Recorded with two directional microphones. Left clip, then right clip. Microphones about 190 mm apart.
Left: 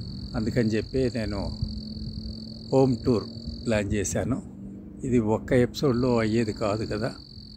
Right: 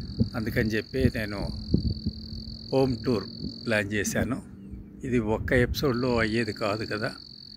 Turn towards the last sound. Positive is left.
turn(degrees=5)  # may be behind; listen again after turning